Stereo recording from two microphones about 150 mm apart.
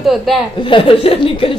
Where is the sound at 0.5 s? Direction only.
35° left (ahead or behind).